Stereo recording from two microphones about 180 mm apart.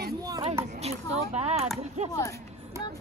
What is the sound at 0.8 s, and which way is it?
Speech, 35° right (ahead or behind).